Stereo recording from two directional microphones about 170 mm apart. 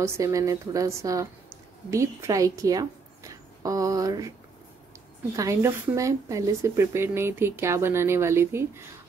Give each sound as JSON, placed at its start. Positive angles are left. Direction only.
{"t": 0.0, "sound": "a woman's voice", "side_deg": -20}
{"t": 5.3, "sound": "speech", "side_deg": -20}